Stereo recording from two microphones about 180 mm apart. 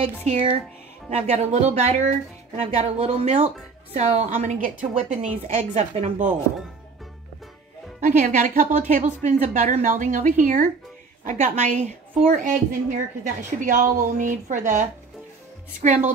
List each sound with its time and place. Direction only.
0.0 s a woman's voice: 35° right (ahead or behind)
8.2 s a woman's voice: 45° right (ahead or behind)